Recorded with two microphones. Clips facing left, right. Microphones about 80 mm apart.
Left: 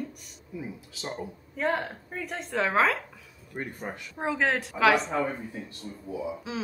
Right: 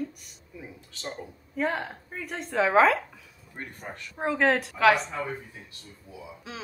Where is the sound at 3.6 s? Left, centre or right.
Centre.